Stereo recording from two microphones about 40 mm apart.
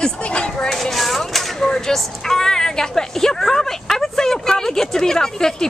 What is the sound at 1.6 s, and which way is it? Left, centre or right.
Speech, centre.